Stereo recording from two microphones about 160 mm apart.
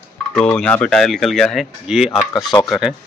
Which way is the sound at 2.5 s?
25° left (ahead or behind).